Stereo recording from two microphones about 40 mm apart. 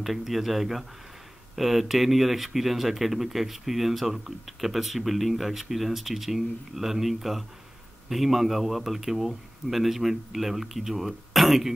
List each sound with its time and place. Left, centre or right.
0.0 s speech: centre